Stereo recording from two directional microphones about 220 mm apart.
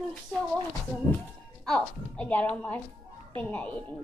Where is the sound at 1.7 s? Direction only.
5° left (ahead or behind).